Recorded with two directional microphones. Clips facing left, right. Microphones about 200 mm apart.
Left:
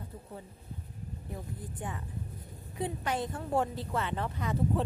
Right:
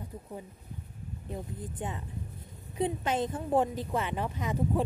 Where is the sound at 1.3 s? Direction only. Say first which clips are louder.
Right 4 dB; 20° right (ahead or behind).